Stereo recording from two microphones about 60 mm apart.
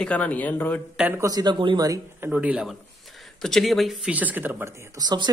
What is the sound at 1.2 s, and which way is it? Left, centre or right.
Speech, right.